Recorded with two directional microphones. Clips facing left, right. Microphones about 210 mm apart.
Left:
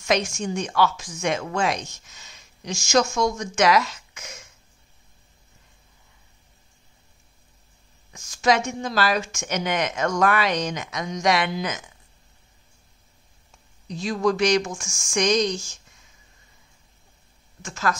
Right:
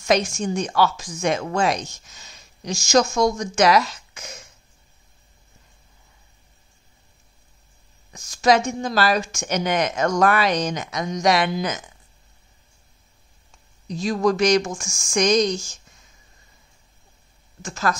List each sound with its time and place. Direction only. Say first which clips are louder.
0.0 s speech: right 3 dB; 40° right (ahead or behind)
8.1 s speech: right 3 dB; 40° right (ahead or behind)
13.8 s speech: right 2 dB; 40° right (ahead or behind)
17.6 s speech: right 2 dB; 35° right (ahead or behind)